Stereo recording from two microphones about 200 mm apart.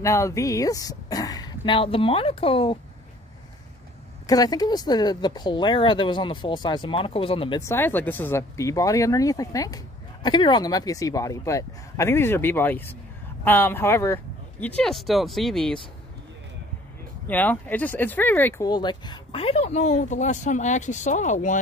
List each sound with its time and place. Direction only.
0.0 s speech: 15° left (ahead or behind)
4.3 s speech: 20° left (ahead or behind)
7.6 s speech: 10° left (ahead or behind)
17.3 s speech: 10° left (ahead or behind); by 21.5 s 40° left (ahead or behind)